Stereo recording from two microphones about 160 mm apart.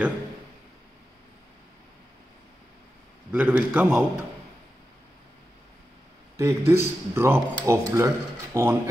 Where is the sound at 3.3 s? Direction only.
10° right (ahead or behind).